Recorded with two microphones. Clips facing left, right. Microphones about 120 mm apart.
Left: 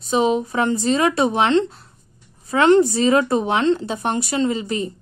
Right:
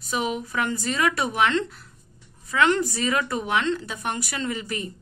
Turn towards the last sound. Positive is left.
turn(degrees=25)  # may be behind; listen again after turning